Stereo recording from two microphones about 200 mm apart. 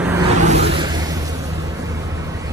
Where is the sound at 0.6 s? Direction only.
25° right (ahead or behind).